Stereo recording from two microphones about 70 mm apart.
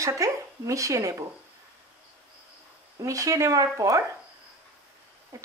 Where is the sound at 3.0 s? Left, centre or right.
Right.